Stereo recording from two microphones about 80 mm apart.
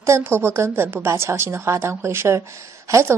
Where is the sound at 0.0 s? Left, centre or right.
Right.